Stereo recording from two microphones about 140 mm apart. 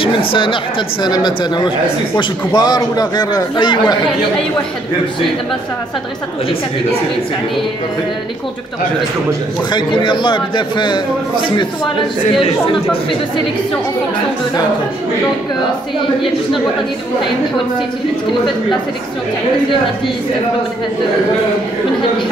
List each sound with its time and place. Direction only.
0.0 s a man's voice: 40° left (ahead or behind)
9.7 s a man's voice: 35° left (ahead or behind)